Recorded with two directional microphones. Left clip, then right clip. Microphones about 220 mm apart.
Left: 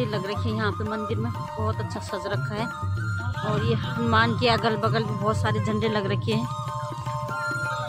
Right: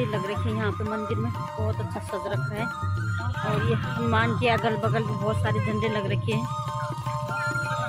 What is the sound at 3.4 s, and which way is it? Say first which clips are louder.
Speech: even; 15° left (ahead or behind).